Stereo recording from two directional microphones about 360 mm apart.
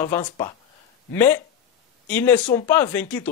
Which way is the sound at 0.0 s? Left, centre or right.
Centre.